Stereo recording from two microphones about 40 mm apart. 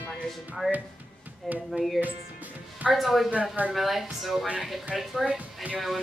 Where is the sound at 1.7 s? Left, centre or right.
Centre.